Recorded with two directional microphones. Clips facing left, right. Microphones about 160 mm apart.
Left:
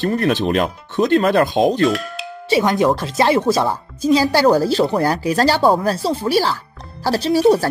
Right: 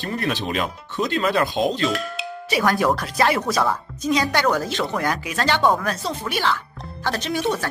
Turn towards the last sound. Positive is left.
turn(degrees=35)  # may be behind; listen again after turning